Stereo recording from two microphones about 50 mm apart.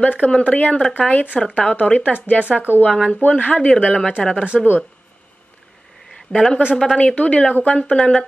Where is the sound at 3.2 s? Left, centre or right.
Left.